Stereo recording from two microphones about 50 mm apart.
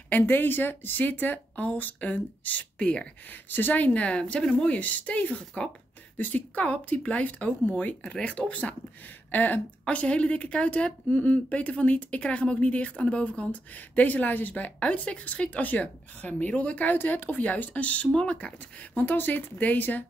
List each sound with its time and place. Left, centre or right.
0.1 s a woman's voice: left
2.8 s a woman's voice: left
3.3 s a woman's voice: left
6.1 s a woman's voice: left